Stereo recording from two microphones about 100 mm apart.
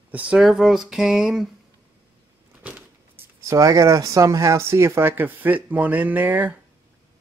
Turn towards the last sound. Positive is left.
turn(degrees=-15)  # may be behind; listen again after turning